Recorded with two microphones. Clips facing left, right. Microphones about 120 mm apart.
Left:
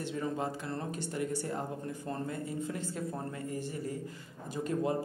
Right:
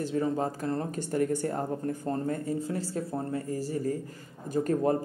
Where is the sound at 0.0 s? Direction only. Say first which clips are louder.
Right 6 dB; 40° right (ahead or behind).